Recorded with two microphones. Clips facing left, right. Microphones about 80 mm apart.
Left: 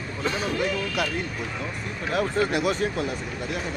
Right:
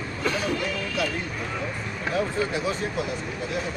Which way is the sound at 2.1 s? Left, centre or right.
Left.